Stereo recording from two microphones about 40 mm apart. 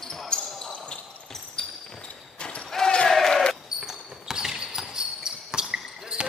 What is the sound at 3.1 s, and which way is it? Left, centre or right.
Basketball bounce, centre.